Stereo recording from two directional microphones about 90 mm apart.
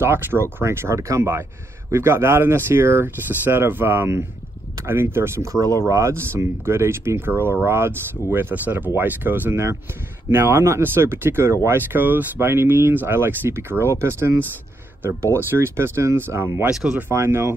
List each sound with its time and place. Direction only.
0.0 s speech: 25° right (ahead or behind)
16.7 s speech: 5° right (ahead or behind)
17.1 s speech: 30° right (ahead or behind)